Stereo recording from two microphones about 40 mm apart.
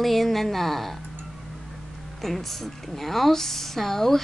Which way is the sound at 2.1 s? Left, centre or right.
Centre.